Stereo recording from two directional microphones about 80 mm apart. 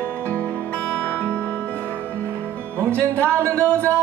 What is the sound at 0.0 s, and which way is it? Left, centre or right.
Music, centre.